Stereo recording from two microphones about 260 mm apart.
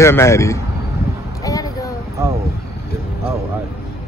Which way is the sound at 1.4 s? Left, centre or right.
Centre.